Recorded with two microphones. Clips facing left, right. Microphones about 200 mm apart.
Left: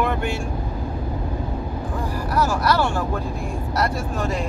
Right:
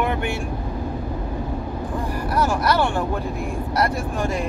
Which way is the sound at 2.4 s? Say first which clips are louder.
Right 1 dB; 15° right (ahead or behind).